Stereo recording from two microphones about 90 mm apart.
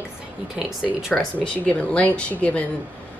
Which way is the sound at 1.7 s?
15° left (ahead or behind).